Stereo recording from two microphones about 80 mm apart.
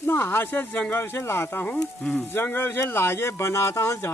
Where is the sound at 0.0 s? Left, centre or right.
Left.